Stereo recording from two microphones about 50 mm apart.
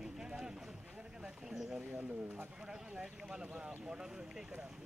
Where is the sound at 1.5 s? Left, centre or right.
Centre.